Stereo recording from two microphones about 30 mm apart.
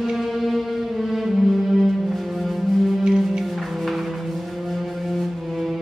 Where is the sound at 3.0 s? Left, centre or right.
Centre.